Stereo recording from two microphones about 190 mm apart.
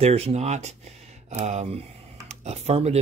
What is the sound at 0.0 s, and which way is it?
Speech, 35° right (ahead or behind).